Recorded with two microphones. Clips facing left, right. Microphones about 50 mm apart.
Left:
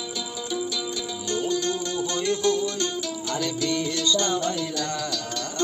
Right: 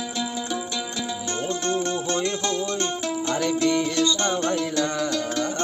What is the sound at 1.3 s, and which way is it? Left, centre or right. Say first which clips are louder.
Music: left 1 dB; right.